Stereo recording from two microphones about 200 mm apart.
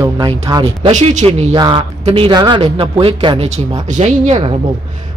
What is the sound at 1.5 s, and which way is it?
A man's voice, 25° right (ahead or behind).